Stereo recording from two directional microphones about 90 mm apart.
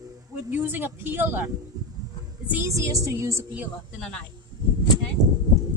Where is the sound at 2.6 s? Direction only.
35° right (ahead or behind).